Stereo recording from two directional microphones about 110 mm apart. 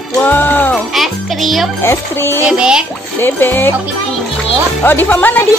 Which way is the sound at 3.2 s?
20° left (ahead or behind).